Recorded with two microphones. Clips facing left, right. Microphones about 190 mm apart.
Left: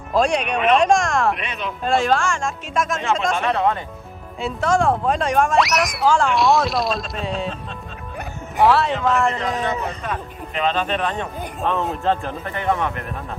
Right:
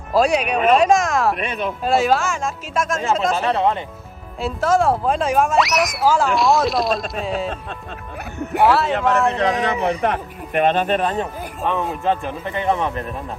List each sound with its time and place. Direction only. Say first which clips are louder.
0.1 s speech: right 2 dB; 5° right (ahead or behind)
1.4 s speech: right 5 dB; 50° right (ahead or behind)
1.9 s speech: right 1 dB; 5° right (ahead or behind)
8.5 s speech: even; centre (ahead or behind)
9.4 s speech: right 4 dB; 70° right (ahead or behind); by 11.2 s 40° right (ahead or behind)
12.0 s speech: right 1 dB; 15° right (ahead or behind)